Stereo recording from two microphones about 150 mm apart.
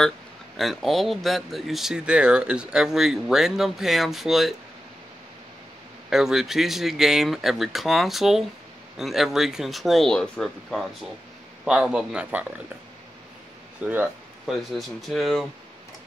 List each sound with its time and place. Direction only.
0.6 s speech: centre (ahead or behind)
6.0 s speech: 5° right (ahead or behind)
13.7 s speech: 10° right (ahead or behind)